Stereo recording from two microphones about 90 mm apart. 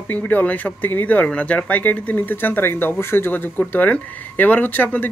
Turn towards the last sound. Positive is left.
turn(degrees=20)  # may be behind; listen again after turning